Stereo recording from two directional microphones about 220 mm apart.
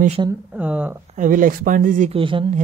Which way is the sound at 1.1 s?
35° right (ahead or behind).